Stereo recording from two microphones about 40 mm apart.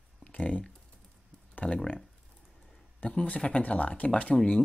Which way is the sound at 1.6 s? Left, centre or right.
Left.